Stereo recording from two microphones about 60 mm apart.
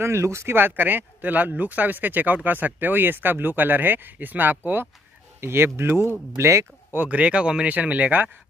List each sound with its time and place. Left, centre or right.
0.0 s speech: right
5.4 s speech: right
6.3 s speech: right
6.9 s speech: right